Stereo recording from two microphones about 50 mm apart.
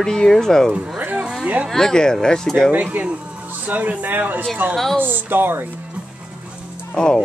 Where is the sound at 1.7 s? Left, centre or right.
Centre.